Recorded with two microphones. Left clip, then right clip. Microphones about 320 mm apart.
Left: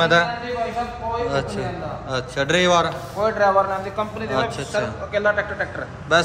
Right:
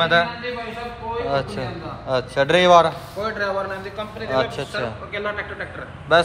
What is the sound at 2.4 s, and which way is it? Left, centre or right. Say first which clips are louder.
Speech: right 2 dB; centre.